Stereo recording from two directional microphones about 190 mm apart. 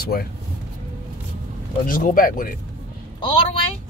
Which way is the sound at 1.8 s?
45° left (ahead or behind).